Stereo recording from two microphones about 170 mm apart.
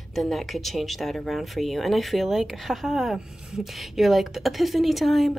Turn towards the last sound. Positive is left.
turn(degrees=0)  # may be behind; listen again after turning